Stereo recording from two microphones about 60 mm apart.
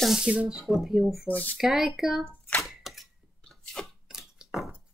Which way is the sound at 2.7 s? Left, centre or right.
Centre.